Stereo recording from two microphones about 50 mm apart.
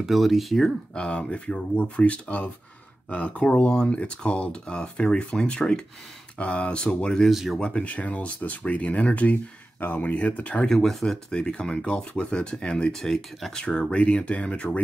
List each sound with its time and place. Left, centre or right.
0.0 s speech: centre
0.9 s speech: left
7.2 s speech: centre
7.5 s speech: centre
7.8 s speech: left
10.7 s speech: centre
11.3 s speech: centre
13.0 s speech: centre
13.7 s speech: left